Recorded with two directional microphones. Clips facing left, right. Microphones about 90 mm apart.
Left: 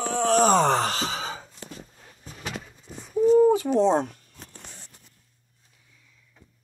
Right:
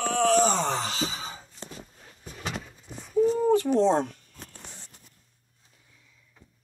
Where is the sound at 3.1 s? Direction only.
10° left (ahead or behind).